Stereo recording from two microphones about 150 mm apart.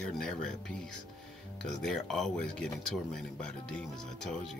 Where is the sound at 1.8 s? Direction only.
5° left (ahead or behind).